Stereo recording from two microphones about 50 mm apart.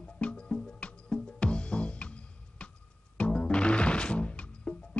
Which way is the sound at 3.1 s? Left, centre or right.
Left.